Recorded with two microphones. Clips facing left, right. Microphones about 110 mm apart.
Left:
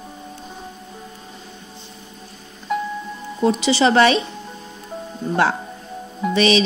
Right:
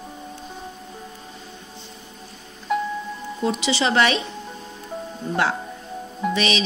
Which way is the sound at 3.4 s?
40° left (ahead or behind).